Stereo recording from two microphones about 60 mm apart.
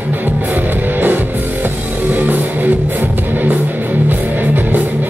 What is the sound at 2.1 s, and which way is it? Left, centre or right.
Music, right.